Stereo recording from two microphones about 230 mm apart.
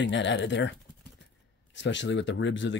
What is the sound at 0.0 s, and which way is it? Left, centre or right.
Speech, left.